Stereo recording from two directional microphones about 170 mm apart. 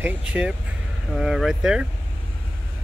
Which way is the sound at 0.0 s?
10° right (ahead or behind).